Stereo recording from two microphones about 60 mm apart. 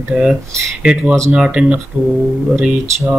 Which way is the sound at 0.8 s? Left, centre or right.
Centre.